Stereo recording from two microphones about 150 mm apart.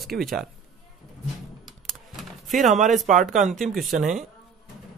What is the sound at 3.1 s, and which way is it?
Speech, 60° right (ahead or behind).